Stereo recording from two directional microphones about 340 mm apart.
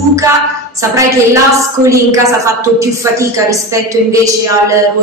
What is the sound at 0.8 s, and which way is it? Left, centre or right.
Speech, centre.